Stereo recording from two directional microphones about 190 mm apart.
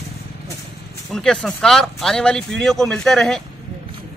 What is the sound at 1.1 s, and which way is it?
Speech, 5° left (ahead or behind).